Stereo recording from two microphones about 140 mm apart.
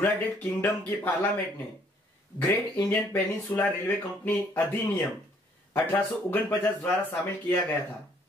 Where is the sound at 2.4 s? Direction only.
15° left (ahead or behind).